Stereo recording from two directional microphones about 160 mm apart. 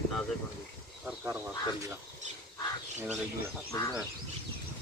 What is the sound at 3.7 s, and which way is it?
Speech, 20° left (ahead or behind).